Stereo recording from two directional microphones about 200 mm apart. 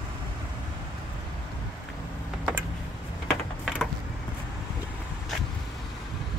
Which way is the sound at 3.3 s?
Centre (ahead or behind).